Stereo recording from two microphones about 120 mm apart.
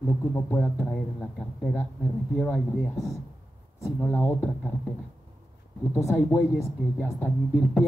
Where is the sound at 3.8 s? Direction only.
20° left (ahead or behind).